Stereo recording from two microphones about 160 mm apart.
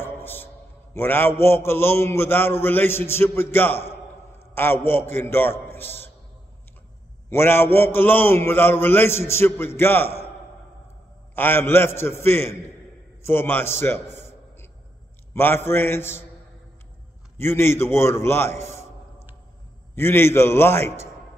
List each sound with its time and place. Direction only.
0.0 s a sound: 15° left (ahead or behind)
0.9 s a man's voice: 15° left (ahead or behind)
7.2 s a man's voice: 15° left (ahead or behind)
11.3 s a man's voice: 15° left (ahead or behind)
17.4 s a man's voice: 15° left (ahead or behind)